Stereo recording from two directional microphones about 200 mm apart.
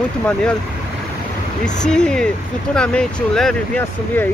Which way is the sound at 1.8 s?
5° left (ahead or behind).